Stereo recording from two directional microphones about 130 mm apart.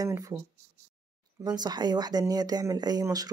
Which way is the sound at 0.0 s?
25° right (ahead or behind).